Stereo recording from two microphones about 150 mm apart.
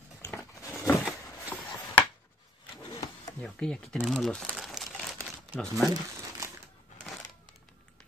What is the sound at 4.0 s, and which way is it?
Crumpling, centre (ahead or behind).